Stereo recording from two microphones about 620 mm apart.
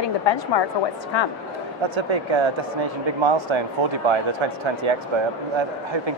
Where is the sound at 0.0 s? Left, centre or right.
Left.